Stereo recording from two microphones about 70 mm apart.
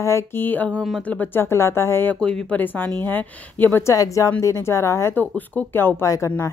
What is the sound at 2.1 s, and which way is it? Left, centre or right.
Speech, centre.